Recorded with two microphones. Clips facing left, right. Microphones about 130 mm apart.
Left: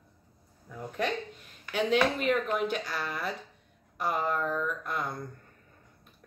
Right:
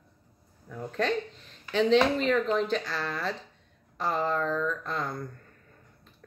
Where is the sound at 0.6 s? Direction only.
10° left (ahead or behind).